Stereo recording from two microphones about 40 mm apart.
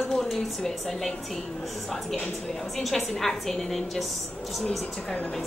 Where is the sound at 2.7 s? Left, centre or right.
Centre.